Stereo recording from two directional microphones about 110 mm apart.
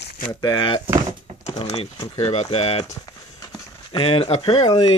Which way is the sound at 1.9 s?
35° left (ahead or behind).